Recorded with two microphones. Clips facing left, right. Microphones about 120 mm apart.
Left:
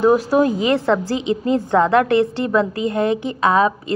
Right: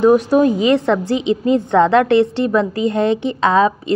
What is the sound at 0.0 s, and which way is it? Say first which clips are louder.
A woman's voice: right 3 dB; 20° right (ahead or behind).